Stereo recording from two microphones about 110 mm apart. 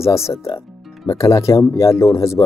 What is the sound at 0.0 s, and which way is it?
Speech, 25° left (ahead or behind).